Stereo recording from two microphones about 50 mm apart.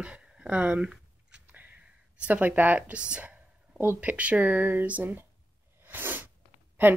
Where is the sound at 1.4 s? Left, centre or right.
Right.